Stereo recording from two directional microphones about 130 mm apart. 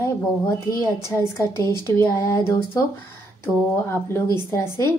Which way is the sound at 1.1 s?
20° left (ahead or behind).